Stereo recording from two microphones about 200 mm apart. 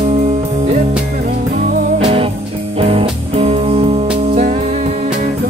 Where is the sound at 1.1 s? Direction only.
50° right (ahead or behind).